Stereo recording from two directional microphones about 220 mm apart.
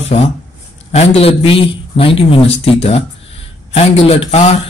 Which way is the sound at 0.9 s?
30° left (ahead or behind).